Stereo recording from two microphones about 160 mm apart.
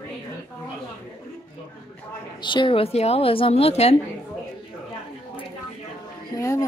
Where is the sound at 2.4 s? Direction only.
30° left (ahead or behind).